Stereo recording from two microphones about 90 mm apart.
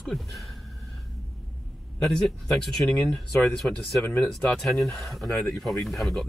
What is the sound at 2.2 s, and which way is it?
Speech, 5° left (ahead or behind).